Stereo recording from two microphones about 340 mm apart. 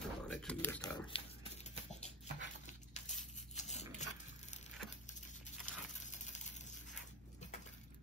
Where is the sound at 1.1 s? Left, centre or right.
Centre.